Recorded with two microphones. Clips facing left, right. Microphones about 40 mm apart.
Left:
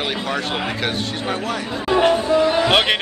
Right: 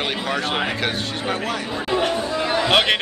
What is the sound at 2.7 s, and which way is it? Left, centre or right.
Speech, centre.